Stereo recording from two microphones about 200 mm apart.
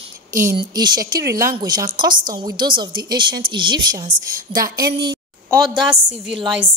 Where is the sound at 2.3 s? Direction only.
20° right (ahead or behind).